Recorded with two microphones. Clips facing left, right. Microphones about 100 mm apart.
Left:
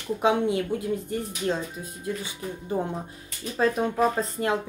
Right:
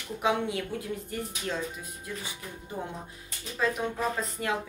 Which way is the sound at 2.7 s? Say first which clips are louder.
Left 8 dB; 35° left (ahead or behind).